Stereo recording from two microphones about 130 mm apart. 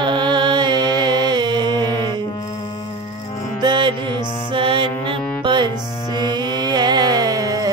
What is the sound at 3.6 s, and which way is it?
Music, 35° right (ahead or behind).